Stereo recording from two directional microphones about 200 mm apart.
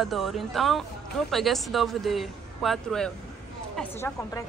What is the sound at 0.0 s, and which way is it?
Speech, centre (ahead or behind).